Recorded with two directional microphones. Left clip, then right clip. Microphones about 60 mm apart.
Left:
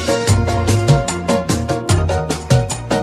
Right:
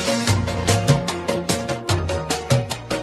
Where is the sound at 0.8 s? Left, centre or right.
Right.